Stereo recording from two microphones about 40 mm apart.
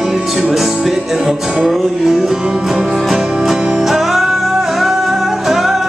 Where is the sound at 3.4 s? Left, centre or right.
Centre.